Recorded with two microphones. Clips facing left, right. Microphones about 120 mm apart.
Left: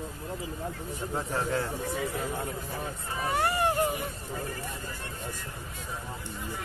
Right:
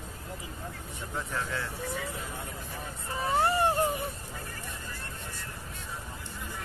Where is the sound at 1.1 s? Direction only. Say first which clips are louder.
Left 4 dB; 35° left (ahead or behind).